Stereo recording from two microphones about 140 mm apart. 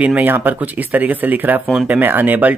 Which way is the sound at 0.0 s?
10° right (ahead or behind).